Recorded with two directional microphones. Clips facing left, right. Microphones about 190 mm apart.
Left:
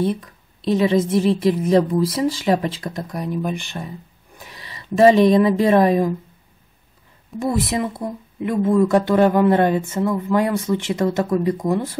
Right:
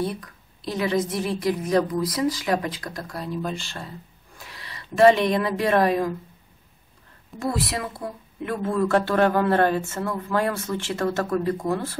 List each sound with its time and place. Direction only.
0.0 s a woman's voice: 20° left (ahead or behind)
7.3 s speech: 20° left (ahead or behind)